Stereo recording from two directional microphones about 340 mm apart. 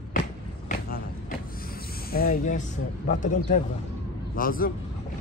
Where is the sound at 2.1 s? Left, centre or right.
Left.